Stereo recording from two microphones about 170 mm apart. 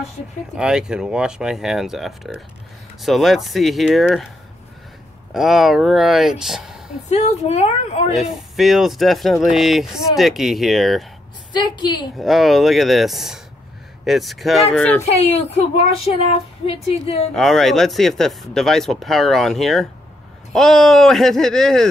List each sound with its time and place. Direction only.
0.6 s speech: 5° right (ahead or behind)
5.3 s speech: centre (ahead or behind)
7.1 s speech: 40° left (ahead or behind)
8.1 s speech: centre (ahead or behind)
11.5 s a woman's voice: 25° left (ahead or behind)
12.2 s speech: centre (ahead or behind)
15.0 s speech: 40° left (ahead or behind)
16.6 s speech: 35° left (ahead or behind)
17.3 s speech: centre (ahead or behind)